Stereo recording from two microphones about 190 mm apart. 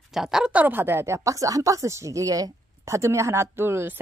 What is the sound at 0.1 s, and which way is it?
Speech, centre (ahead or behind).